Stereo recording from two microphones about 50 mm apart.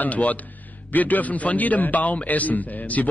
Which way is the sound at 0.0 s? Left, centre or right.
Left.